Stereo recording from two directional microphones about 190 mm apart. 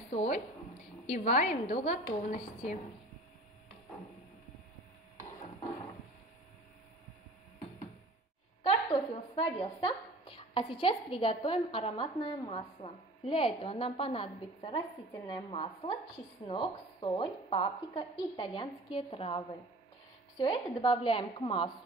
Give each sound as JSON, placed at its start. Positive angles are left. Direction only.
{"t": 0.1, "sound": "a woman's voice", "side_deg": 35}
{"t": 8.6, "sound": "a woman's voice", "side_deg": 30}